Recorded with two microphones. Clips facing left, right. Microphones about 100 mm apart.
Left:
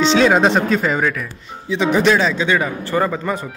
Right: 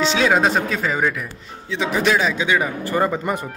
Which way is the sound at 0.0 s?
5° right (ahead or behind).